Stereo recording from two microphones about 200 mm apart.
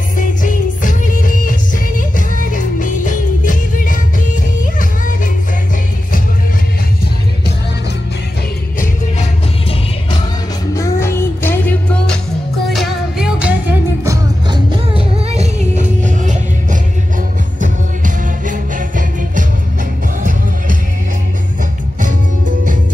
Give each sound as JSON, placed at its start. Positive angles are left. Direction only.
{"t": 0.2, "sound": "music", "side_deg": 40}
{"t": 10.7, "sound": "music", "side_deg": 15}
{"t": 12.7, "sound": "music", "side_deg": -5}
{"t": 17.6, "sound": "music", "side_deg": -40}